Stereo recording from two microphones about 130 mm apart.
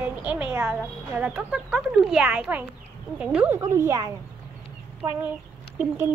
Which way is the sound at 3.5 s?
20° right (ahead or behind).